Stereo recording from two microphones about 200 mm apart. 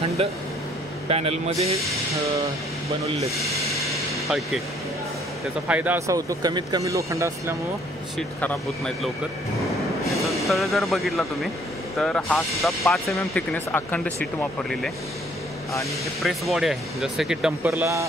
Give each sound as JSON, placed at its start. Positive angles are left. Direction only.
{"t": 0.2, "sound": "speech", "side_deg": -30}
{"t": 3.7, "sound": "vehicle", "side_deg": 0}
{"t": 5.7, "sound": "speech", "side_deg": -10}
{"t": 8.2, "sound": "speech", "side_deg": 5}
{"t": 16.2, "sound": "speech", "side_deg": 0}